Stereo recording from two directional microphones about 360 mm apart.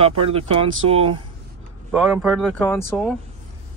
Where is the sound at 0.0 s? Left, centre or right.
Centre.